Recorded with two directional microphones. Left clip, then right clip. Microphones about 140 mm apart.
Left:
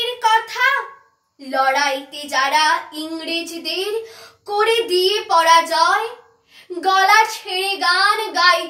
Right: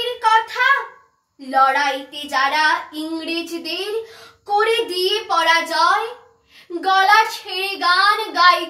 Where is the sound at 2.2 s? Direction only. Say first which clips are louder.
Left 1 dB; 20° left (ahead or behind).